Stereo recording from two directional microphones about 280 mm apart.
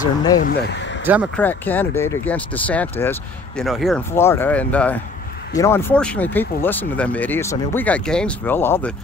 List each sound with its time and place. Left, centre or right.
0.4 s speech: left
1.0 s speech: centre
1.4 s speech: centre